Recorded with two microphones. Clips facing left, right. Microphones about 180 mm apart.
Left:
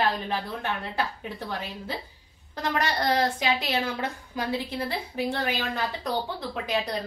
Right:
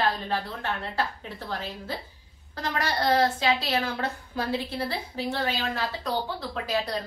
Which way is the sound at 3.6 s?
10° left (ahead or behind).